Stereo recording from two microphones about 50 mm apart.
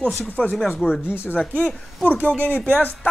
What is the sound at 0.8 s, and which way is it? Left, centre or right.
Speech, left.